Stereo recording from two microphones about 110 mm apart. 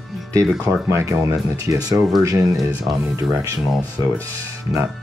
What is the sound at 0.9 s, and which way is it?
Speech, 25° right (ahead or behind).